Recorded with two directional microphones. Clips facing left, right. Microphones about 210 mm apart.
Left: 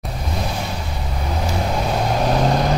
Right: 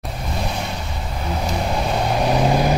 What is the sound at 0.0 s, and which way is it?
Vehicle, centre (ahead or behind).